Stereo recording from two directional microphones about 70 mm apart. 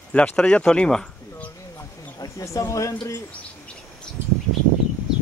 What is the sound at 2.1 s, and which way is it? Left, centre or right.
Speech, left.